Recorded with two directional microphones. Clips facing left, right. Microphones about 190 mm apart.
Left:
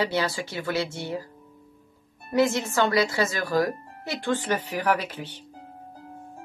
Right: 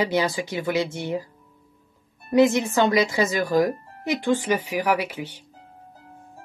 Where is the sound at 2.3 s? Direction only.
15° right (ahead or behind).